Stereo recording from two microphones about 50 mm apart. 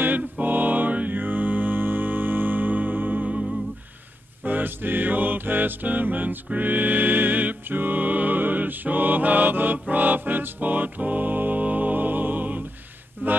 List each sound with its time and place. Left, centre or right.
0.0 s music: right
4.4 s mantra: right
9.8 s music: right